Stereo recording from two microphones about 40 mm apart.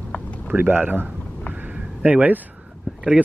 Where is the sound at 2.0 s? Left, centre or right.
Right.